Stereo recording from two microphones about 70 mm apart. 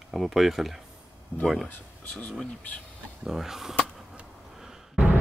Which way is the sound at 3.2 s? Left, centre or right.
Centre.